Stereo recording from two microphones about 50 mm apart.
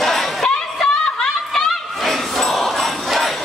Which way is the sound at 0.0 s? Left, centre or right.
Centre.